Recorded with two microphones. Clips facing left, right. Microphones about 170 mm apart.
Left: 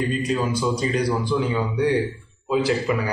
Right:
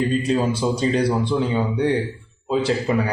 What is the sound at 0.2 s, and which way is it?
A man's voice, 30° right (ahead or behind).